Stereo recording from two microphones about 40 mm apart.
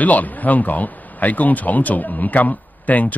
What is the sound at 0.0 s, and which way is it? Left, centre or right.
Speech, left.